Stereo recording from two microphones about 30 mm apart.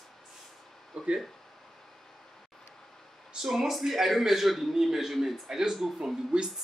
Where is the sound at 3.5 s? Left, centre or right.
Centre.